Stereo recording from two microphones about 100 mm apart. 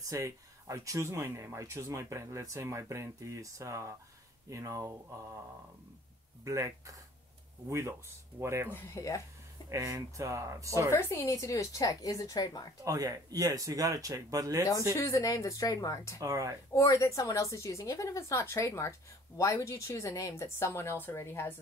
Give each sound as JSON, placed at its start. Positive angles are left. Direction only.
{"t": 0.0, "sound": "speech", "side_deg": -35}
{"t": 6.4, "sound": "speech", "side_deg": -35}
{"t": 8.6, "sound": "speech", "side_deg": 30}
{"t": 9.7, "sound": "speech", "side_deg": -30}
{"t": 10.9, "sound": "speech", "side_deg": 30}
{"t": 12.8, "sound": "speech", "side_deg": -35}
{"t": 15.0, "sound": "speech", "side_deg": 35}
{"t": 16.2, "sound": "speech", "side_deg": -35}
{"t": 16.7, "sound": "a woman's voice", "side_deg": 30}